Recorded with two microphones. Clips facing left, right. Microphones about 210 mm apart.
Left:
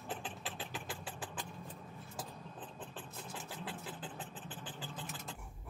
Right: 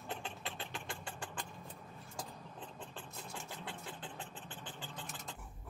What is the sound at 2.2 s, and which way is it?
Vehicle, 5° left (ahead or behind).